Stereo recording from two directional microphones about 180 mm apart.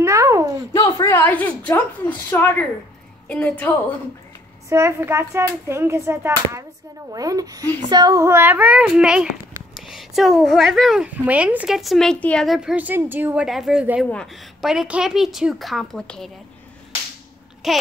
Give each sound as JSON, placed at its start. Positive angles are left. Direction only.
{"t": 0.0, "sound": "a sound", "side_deg": -15}
{"t": 0.7, "sound": "a woman's voice", "side_deg": 20}
{"t": 4.6, "sound": "a woman's voice", "side_deg": -15}
{"t": 17.6, "sound": "a child's voice", "side_deg": 0}